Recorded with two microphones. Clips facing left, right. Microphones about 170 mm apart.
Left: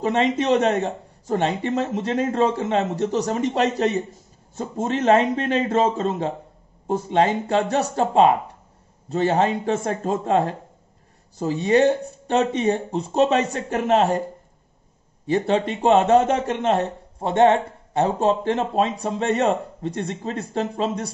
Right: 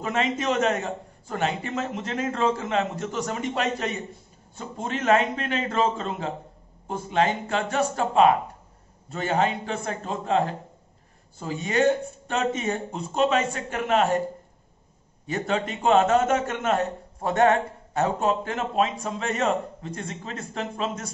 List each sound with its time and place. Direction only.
0.0 s a man's voice: 30° left (ahead or behind)
15.2 s a man's voice: 30° left (ahead or behind)